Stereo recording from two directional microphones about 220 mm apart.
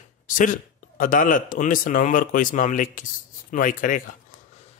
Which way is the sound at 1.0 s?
40° left (ahead or behind).